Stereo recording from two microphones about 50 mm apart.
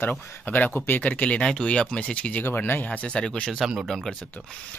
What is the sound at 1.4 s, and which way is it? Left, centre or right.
Speech, centre.